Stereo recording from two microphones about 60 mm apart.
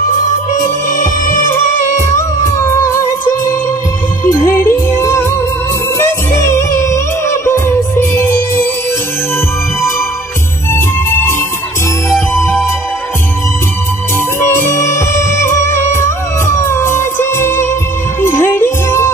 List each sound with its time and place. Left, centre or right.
1.5 s music: left
4.3 s music: left
10.7 s music: left
14.4 s music: left